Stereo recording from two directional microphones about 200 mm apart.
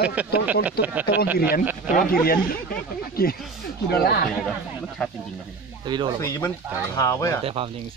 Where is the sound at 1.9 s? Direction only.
45° left (ahead or behind).